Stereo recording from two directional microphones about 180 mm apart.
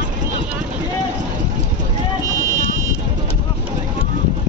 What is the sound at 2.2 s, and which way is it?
Vehicle, 15° right (ahead or behind).